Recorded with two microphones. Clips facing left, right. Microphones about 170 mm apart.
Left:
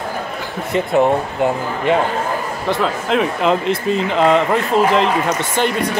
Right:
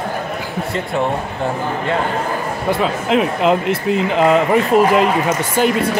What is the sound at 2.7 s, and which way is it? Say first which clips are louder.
A man's voice: right 1 dB; 5° right (ahead or behind).